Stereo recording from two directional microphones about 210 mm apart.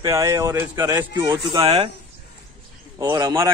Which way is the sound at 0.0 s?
15° right (ahead or behind).